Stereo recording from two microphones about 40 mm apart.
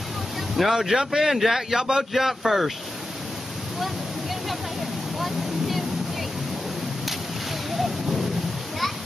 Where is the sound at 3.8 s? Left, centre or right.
Centre.